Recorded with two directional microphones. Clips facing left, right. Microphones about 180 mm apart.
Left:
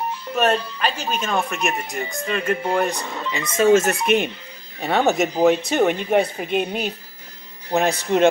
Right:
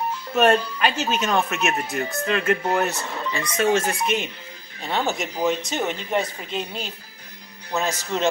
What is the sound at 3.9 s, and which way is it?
Speech, 60° left (ahead or behind).